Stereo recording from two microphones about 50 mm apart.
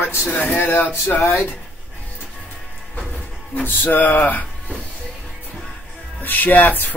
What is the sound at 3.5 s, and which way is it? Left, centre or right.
Speech, left.